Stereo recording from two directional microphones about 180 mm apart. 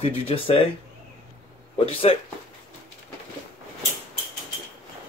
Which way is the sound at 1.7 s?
30° left (ahead or behind).